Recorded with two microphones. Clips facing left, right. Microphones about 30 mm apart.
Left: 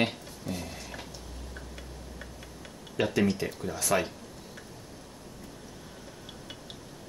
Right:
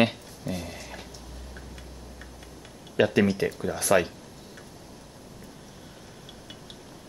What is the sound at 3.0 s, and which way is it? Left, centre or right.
Speech, right.